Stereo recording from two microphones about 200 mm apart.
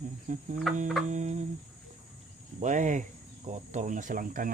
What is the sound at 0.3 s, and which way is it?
Speech, 40° right (ahead or behind).